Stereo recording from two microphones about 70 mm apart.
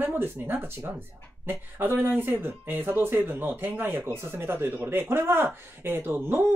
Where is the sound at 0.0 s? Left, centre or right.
Right.